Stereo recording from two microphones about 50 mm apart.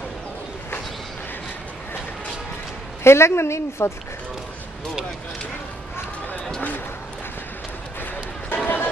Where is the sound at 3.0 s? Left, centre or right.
Left.